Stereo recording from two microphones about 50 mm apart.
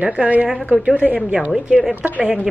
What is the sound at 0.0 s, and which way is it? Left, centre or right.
A woman's voice, right.